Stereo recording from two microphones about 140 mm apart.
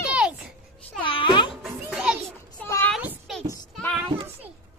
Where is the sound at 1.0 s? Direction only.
35° left (ahead or behind).